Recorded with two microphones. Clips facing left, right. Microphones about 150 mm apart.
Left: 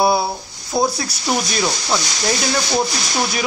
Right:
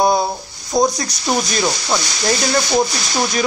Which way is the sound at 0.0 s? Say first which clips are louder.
Right 1 dB; 5° left (ahead or behind).